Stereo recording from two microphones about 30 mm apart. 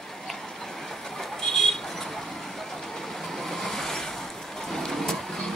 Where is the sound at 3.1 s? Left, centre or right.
Centre.